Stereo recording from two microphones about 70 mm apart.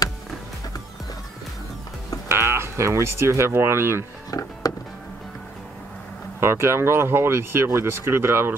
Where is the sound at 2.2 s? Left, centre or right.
Right.